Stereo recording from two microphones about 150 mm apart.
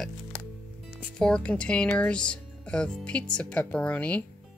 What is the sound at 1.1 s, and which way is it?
Speech, 5° left (ahead or behind).